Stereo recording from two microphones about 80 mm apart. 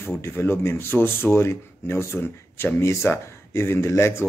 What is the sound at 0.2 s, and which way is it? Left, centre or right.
Speech, left.